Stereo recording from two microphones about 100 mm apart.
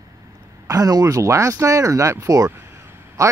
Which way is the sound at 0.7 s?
40° right (ahead or behind).